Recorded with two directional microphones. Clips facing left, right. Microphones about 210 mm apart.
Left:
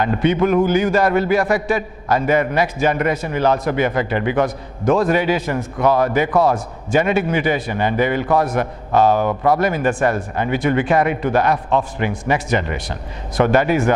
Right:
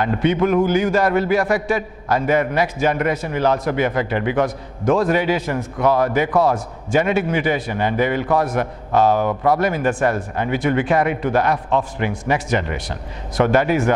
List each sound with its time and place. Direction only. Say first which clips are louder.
0.0 s a man's voice: left 1 dB; 15° left (ahead or behind)